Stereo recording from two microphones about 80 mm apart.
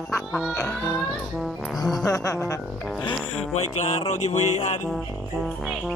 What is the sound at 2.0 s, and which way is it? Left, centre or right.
Speech, left.